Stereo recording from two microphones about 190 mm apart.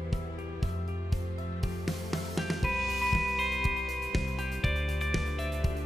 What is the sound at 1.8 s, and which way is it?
Music, centre (ahead or behind).